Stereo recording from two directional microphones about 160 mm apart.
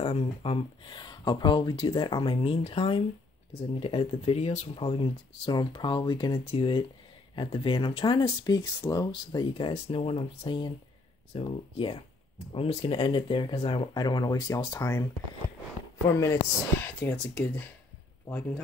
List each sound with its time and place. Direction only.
0.0 s speech: 35° left (ahead or behind); by 15.0 s 20° left (ahead or behind)
16.1 s a man's voice: 20° left (ahead or behind)